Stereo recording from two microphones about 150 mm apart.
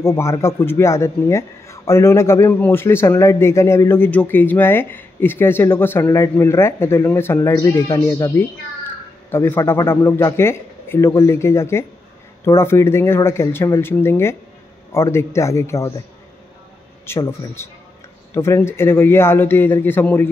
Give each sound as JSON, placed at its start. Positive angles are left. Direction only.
{"t": 0.0, "sound": "a man's voice", "side_deg": 20}
{"t": 17.0, "sound": "a man's voice", "side_deg": 15}